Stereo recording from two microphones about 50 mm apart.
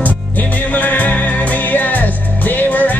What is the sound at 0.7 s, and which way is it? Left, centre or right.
Music, left.